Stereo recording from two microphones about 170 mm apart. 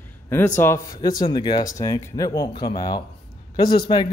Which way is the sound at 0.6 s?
20° left (ahead or behind).